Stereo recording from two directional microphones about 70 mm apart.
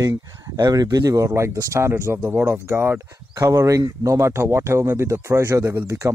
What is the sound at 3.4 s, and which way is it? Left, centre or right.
Speech, right.